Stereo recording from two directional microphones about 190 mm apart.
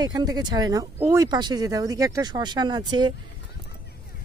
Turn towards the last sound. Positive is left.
turn(degrees=-20)  # may be behind; listen again after turning